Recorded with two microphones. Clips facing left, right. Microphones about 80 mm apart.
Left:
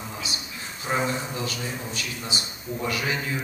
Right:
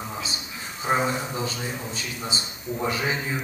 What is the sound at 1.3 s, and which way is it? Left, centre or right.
A man's voice, right.